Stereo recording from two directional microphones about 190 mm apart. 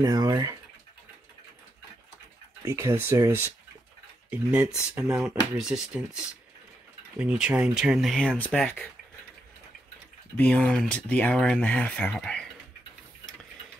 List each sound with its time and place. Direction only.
0.0 s speech: 20° right (ahead or behind)
2.6 s speech: 15° right (ahead or behind); by 8.8 s 10° left (ahead or behind)
10.3 s speech: 5° left (ahead or behind)